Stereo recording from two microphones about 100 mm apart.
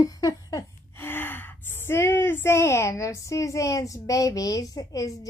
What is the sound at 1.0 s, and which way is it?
A woman's voice, 20° left (ahead or behind).